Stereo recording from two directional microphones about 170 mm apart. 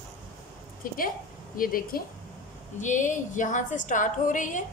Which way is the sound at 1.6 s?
55° left (ahead or behind).